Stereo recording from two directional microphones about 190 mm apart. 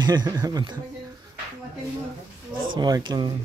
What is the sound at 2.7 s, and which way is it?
Speech, 25° right (ahead or behind).